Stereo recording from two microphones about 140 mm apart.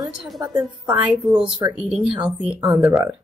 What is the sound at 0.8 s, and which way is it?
Speech, 10° right (ahead or behind).